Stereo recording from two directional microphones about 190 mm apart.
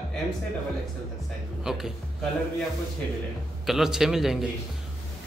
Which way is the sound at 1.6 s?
Centre (ahead or behind).